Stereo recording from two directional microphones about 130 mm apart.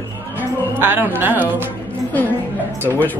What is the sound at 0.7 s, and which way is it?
Speech, 15° right (ahead or behind).